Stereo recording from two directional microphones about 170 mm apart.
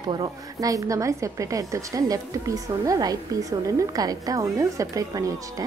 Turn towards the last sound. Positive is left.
turn(degrees=-20)  # may be behind; listen again after turning